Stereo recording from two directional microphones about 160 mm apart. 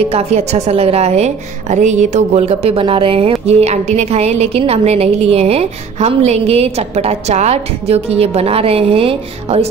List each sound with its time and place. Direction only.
0.1 s a woman's voice: 40° right (ahead or behind)